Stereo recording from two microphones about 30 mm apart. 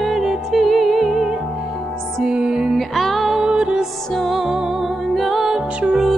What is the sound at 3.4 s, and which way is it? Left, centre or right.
Music, right.